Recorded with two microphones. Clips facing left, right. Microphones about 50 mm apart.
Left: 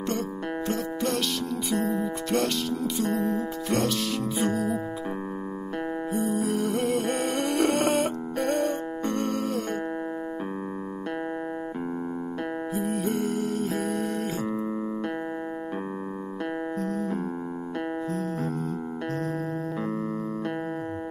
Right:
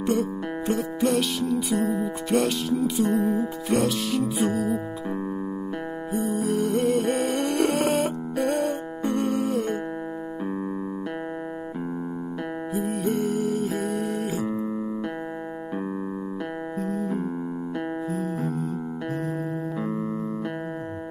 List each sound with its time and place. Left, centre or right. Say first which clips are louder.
0.7 s music: right 5 dB; centre
6.1 s music: right 3 dB; centre
12.7 s music: right 3 dB; centre
16.8 s music: right 4 dB; centre